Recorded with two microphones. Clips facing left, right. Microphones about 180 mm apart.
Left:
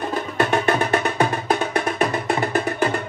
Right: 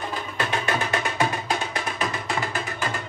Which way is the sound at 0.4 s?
50° left (ahead or behind).